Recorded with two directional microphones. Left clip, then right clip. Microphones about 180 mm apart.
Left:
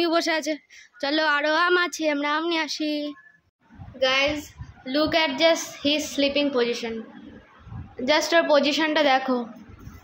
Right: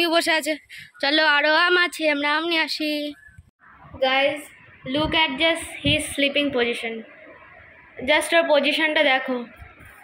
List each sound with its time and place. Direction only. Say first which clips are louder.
0.0 s a woman's voice: right 3 dB; 10° left (ahead or behind)
4.8 s speech: right 1 dB; 15° left (ahead or behind)
8.3 s a woman's voice: even; 20° left (ahead or behind)